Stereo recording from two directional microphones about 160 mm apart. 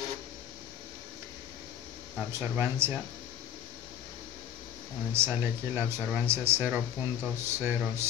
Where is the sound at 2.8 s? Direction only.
15° right (ahead or behind).